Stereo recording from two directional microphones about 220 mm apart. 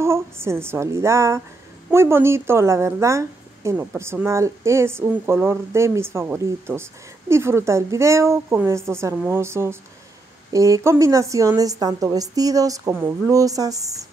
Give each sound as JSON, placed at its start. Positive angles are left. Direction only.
{"t": 0.0, "sound": "speech", "side_deg": -10}